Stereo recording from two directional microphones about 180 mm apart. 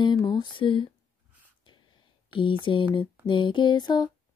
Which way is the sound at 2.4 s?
30° left (ahead or behind).